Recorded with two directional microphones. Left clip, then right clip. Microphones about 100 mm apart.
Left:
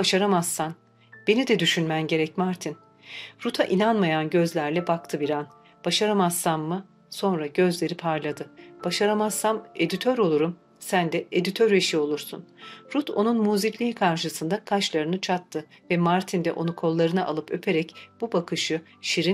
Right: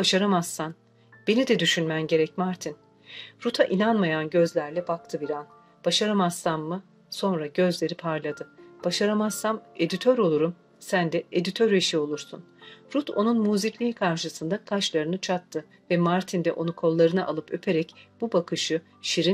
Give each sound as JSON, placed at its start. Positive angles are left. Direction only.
{"t": 0.0, "sound": "speech", "side_deg": 55}